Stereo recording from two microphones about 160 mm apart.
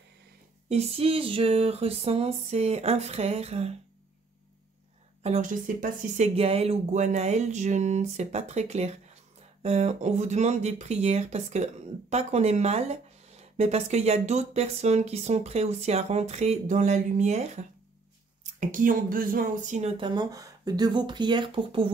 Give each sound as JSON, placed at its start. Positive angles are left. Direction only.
{"t": 0.7, "sound": "a sound", "side_deg": -40}
{"t": 5.2, "sound": "a woman's voice", "side_deg": -45}
{"t": 18.6, "sound": "speech", "side_deg": -55}
{"t": 20.0, "sound": "speech", "side_deg": -30}